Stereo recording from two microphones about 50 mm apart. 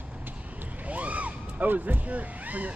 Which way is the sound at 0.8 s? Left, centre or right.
Right.